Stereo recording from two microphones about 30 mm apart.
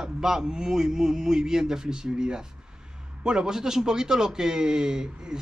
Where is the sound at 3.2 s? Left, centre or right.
Right.